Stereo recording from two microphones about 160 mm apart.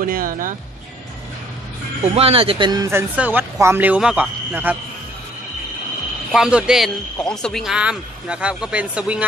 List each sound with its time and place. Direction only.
0.0 s speech: 60° right (ahead or behind)
2.1 s speech: 35° right (ahead or behind)
2.9 s speech: 15° right (ahead or behind)
6.3 s speech: 5° right (ahead or behind)